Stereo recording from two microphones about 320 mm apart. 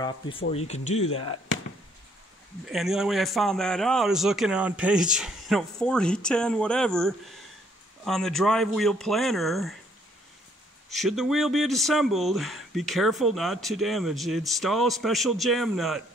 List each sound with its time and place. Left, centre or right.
0.0 s speech: centre
2.6 s speech: centre
10.9 s speech: centre